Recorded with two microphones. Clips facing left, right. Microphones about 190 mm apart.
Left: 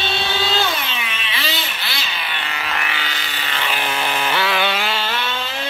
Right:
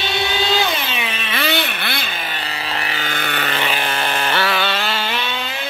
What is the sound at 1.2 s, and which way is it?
Vehicle, 55° right (ahead or behind).